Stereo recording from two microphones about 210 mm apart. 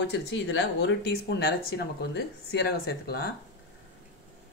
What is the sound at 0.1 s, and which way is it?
Speech, 55° left (ahead or behind).